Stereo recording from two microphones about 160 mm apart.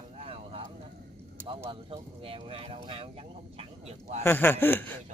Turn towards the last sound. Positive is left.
turn(degrees=15)  # may be behind; listen again after turning